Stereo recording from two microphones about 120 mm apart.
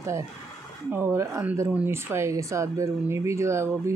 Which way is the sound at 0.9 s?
20° right (ahead or behind).